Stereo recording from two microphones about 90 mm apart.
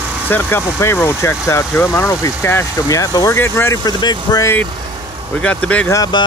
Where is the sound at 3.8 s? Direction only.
50° left (ahead or behind).